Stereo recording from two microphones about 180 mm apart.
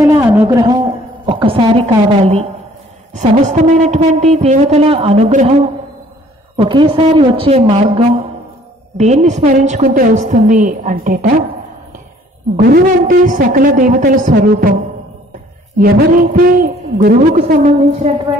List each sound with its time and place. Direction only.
0.2 s a sound: 15° right (ahead or behind)
1.2 s a sound: 30° right (ahead or behind)
1.9 s speech: 30° right (ahead or behind)
6.6 s a man's voice: 30° right (ahead or behind)
9.8 s a man's voice: 50° right (ahead or behind)
12.5 s a man's voice: 60° right (ahead or behind)
15.8 s a man's voice: 55° right (ahead or behind)